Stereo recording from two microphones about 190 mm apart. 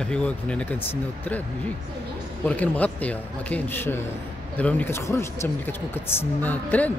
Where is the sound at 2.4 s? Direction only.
10° left (ahead or behind).